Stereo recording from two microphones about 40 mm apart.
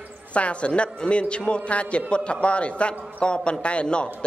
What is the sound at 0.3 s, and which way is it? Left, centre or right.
A man's voice, left.